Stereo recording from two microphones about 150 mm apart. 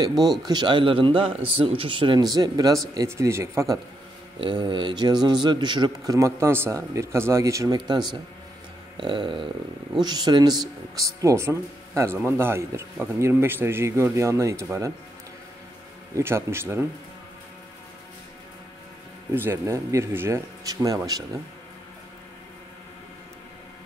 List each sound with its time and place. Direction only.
0.0 s a man's voice: 25° right (ahead or behind)
4.4 s a man's voice: 30° right (ahead or behind)
16.2 s speech: 15° right (ahead or behind)
19.3 s a man's voice: 15° right (ahead or behind)